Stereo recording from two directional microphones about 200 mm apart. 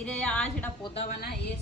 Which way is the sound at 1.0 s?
55° left (ahead or behind).